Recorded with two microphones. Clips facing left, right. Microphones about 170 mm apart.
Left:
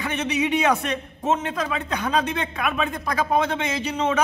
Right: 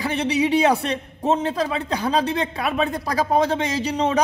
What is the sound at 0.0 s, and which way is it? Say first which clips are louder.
A man's voice: right 3 dB; 35° right (ahead or behind).